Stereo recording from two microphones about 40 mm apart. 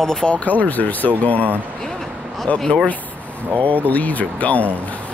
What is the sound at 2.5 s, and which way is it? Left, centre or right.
Speech, centre.